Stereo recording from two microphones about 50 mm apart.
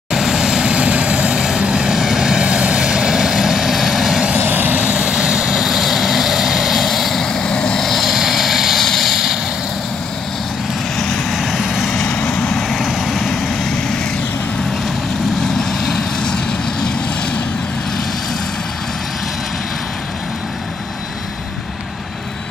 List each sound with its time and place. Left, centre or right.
0.1 s vehicle: centre
4.4 s vehicle: right
4.9 s vehicle: centre
5.6 s vehicle: centre
7.2 s vehicle: centre
7.8 s vehicle: centre
11.0 s vehicle: centre
11.9 s vehicle: centre
12.5 s vehicle: centre
15.9 s vehicle: centre